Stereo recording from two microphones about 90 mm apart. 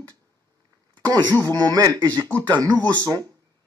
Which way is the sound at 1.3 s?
20° left (ahead or behind).